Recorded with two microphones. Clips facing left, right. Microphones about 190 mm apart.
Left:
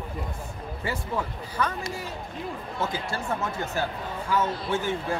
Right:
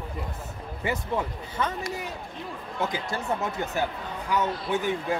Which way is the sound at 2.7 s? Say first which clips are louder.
Right 2 dB; 15° right (ahead or behind).